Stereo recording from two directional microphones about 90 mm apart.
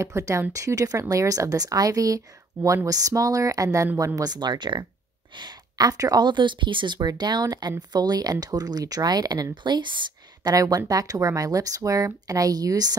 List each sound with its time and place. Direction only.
0.0 s speech: 35° right (ahead or behind)
9.6 s speech: 60° right (ahead or behind)
10.5 s speech: 40° right (ahead or behind)